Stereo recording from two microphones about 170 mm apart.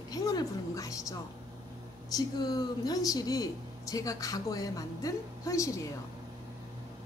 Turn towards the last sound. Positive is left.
turn(degrees=20)  # may be behind; listen again after turning